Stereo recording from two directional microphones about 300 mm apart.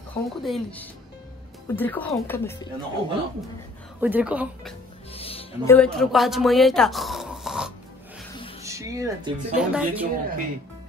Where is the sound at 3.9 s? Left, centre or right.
Centre.